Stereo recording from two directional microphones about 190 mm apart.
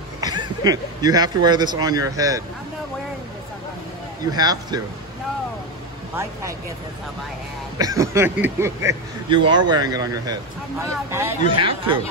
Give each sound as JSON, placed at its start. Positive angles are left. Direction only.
{"t": 0.2, "sound": "speech", "side_deg": -20}
{"t": 4.3, "sound": "speech", "side_deg": -20}
{"t": 7.8, "sound": "speech", "side_deg": -15}
{"t": 9.3, "sound": "speech", "side_deg": -25}
{"t": 11.5, "sound": "speech", "side_deg": -25}